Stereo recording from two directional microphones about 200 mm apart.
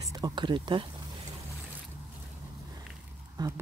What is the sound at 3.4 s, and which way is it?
Speech, 20° right (ahead or behind).